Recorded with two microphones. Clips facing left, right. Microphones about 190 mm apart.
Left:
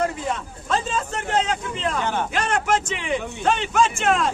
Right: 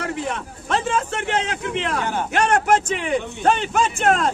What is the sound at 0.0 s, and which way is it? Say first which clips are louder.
A man's voice: left 1 dB; 70° right (ahead or behind).